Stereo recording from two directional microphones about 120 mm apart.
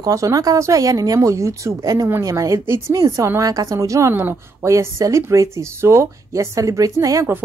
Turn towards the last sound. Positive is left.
turn(degrees=-25)  # may be behind; listen again after turning